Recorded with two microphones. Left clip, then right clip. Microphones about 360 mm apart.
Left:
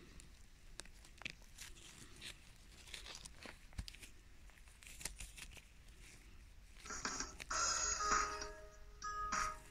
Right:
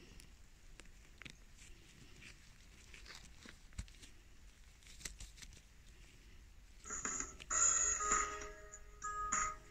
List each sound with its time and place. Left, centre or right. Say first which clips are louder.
6.9 s music: even; centre